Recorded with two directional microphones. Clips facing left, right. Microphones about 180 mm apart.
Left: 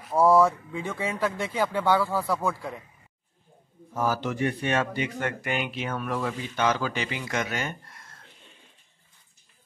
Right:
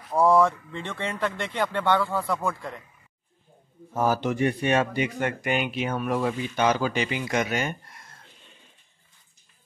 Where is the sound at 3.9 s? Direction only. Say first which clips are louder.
Right 3 dB; 20° right (ahead or behind).